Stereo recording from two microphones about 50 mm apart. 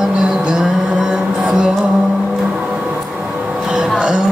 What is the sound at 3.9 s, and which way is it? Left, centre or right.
Music, centre.